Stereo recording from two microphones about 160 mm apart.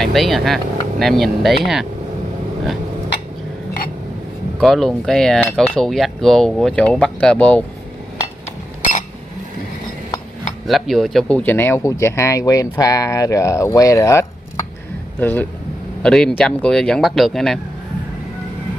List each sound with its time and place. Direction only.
0.0 s cutlery: centre (ahead or behind)
4.6 s cutlery: centre (ahead or behind)
10.7 s speech: centre (ahead or behind)
16.0 s cutlery: 5° left (ahead or behind)